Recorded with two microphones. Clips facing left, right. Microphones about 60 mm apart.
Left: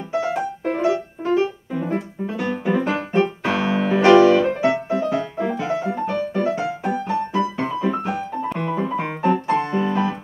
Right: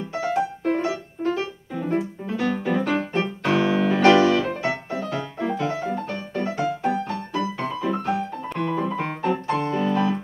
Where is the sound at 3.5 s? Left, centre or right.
Centre.